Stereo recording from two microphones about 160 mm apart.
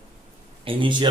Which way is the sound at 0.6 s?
35° right (ahead or behind).